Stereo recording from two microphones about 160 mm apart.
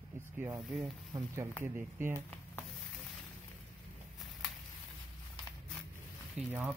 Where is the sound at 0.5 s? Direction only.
20° right (ahead or behind).